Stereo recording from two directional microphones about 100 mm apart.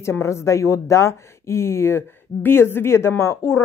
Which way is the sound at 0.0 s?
25° left (ahead or behind).